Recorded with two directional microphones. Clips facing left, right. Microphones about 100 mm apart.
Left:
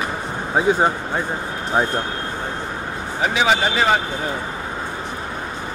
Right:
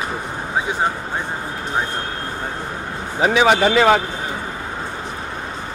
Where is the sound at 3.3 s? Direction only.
60° right (ahead or behind); by 3.9 s 75° right (ahead or behind).